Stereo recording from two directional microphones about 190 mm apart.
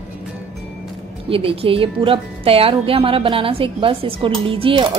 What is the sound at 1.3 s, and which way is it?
A woman's voice, 30° right (ahead or behind).